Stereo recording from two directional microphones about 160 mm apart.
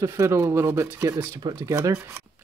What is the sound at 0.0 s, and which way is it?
Speech, 20° right (ahead or behind).